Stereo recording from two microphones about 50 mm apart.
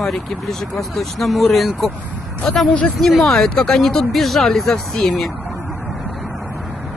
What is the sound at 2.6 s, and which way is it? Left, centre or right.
Speech, left.